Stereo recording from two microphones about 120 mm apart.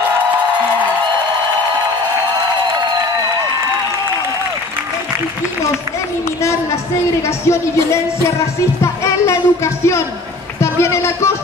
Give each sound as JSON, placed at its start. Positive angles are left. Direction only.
{"t": 6.4, "sound": "speech", "side_deg": 25}